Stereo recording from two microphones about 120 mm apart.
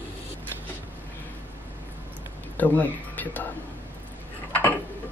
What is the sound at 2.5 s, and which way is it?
Speech, 15° left (ahead or behind).